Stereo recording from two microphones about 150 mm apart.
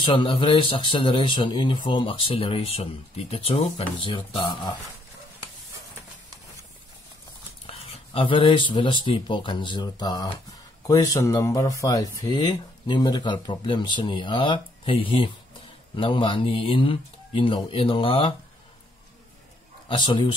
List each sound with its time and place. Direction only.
0.0 s speech: 35° left (ahead or behind)
7.6 s a sound: 40° left (ahead or behind)
9.0 s speech: 35° left (ahead or behind)
19.9 s speech: 30° left (ahead or behind)